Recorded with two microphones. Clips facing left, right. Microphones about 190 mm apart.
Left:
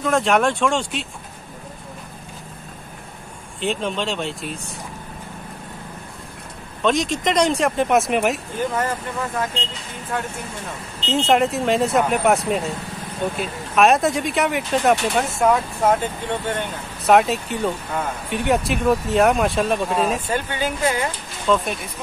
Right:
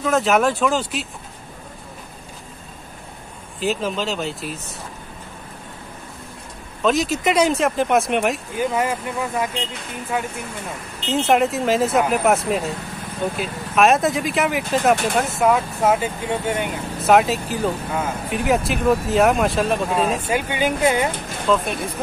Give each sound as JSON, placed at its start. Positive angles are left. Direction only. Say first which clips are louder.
{"t": 0.0, "sound": "speech", "louder": "right 1 dB", "side_deg": 0}
{"t": 3.6, "sound": "speech", "louder": "right 1 dB", "side_deg": -5}
{"t": 6.8, "sound": "speech", "louder": "right 1 dB", "side_deg": -5}
{"t": 8.5, "sound": "speech", "louder": "right 2 dB", "side_deg": -10}
{"t": 20.3, "sound": "speech", "louder": "right 3 dB", "side_deg": -15}
{"t": 21.5, "sound": "speech", "louder": "even", "side_deg": 0}